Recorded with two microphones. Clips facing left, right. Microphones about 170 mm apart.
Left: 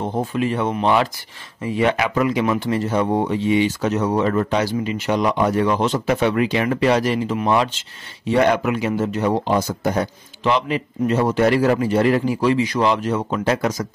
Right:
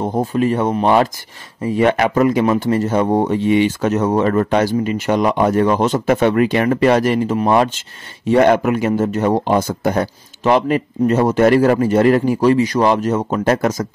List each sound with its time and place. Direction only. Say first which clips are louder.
0.0 s speech: right 4 dB; 40° right (ahead or behind)